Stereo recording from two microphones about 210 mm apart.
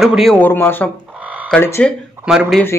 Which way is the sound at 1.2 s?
5° right (ahead or behind).